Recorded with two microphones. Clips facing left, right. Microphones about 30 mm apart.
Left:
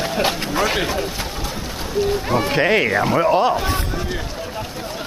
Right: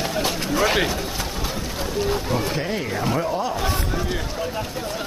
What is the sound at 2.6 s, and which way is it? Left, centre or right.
Speech, left.